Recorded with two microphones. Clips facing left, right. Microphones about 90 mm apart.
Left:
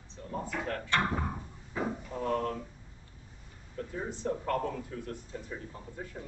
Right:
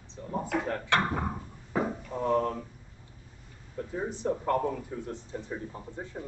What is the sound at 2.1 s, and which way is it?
Speech, 15° right (ahead or behind).